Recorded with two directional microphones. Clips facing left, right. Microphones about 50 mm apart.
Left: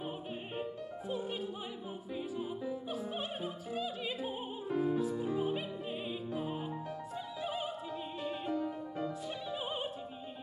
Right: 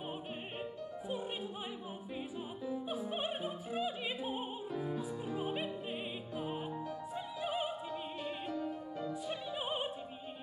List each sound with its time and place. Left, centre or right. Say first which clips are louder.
0.6 s music: left 2 dB; centre
2.9 s opera: right 1 dB; centre
5.2 s music: left 3 dB; centre
7.2 s music: right 1 dB; centre
9.3 s opera: even; centre